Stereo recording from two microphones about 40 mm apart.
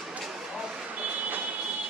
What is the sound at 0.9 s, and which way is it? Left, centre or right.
Vehicle, right.